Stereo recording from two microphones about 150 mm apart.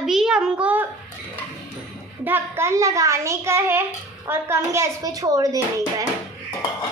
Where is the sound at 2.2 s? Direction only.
15° right (ahead or behind).